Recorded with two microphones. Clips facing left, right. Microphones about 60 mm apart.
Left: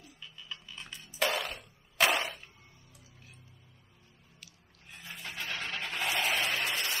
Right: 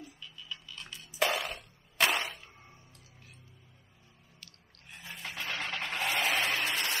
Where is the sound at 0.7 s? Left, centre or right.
Left.